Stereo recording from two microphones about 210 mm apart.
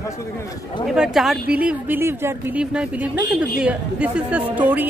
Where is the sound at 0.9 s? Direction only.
Centre (ahead or behind).